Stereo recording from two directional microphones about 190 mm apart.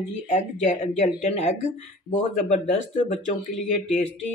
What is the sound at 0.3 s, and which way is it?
Speech, 40° left (ahead or behind).